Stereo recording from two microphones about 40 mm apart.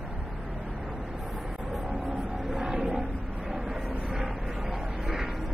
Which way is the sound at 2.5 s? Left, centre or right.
Centre.